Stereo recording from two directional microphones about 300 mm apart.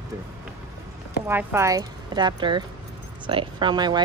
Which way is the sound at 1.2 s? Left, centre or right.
Centre.